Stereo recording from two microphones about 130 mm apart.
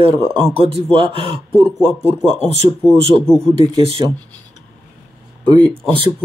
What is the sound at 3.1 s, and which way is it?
Speech, 5° left (ahead or behind).